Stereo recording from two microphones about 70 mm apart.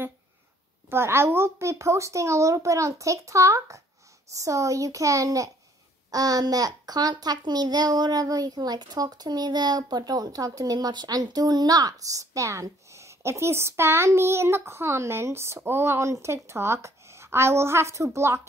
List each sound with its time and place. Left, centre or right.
0.8 s a child's voice: right
6.1 s a child's voice: right